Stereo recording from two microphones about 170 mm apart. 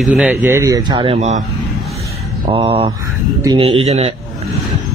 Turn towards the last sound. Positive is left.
turn(degrees=-40)  # may be behind; listen again after turning